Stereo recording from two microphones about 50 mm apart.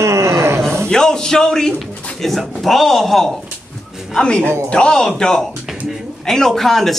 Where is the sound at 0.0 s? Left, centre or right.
Right.